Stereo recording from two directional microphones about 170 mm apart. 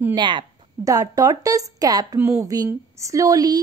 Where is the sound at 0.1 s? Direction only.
25° right (ahead or behind).